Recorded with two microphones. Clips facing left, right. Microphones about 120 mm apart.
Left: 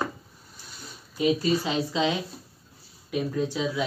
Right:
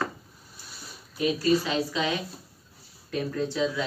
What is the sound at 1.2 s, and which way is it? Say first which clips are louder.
Speech: even; 20° left (ahead or behind).